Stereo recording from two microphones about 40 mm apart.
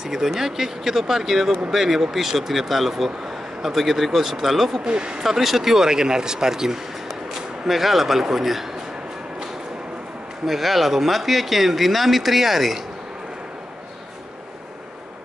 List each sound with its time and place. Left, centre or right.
0.0 s speech: centre
4.8 s speech: right
5.2 s speech: centre
10.4 s speech: centre